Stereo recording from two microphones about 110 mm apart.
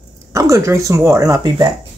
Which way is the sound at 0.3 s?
30° right (ahead or behind).